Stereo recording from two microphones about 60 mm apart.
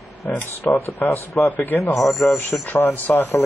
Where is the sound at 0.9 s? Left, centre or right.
Left.